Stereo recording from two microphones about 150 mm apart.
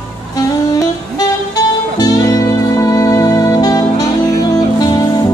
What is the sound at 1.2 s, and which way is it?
Music, 25° left (ahead or behind).